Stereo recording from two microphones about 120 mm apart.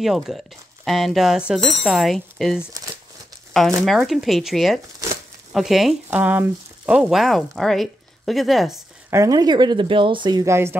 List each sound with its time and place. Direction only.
0.0 s speech: centre (ahead or behind)
6.0 s speech: 15° right (ahead or behind)
9.1 s speech: 30° right (ahead or behind)
10.4 s speech: 20° right (ahead or behind)